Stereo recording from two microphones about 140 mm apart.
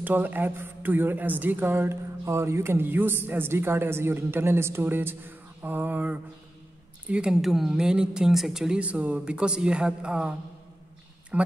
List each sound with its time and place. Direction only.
0.0 s speech: 15° right (ahead or behind)
11.3 s speech: 10° right (ahead or behind)